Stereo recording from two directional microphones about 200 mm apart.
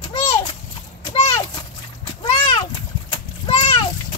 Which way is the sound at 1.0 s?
25° left (ahead or behind).